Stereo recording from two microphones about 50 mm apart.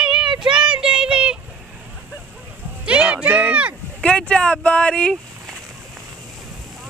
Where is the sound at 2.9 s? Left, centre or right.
Right.